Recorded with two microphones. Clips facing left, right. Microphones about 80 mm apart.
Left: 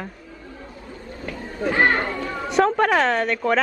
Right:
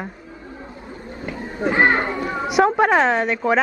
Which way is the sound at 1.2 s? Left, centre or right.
Right.